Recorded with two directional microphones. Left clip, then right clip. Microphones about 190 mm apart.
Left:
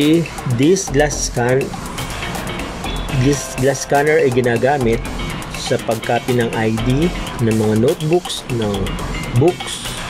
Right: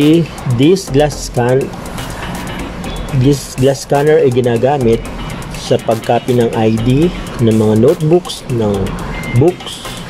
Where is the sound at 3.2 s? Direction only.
5° right (ahead or behind).